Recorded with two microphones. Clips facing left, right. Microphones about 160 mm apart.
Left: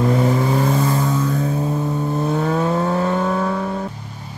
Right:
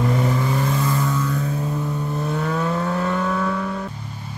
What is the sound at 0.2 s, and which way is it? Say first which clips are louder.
Vehicle: left 4 dB; 30° left (ahead or behind).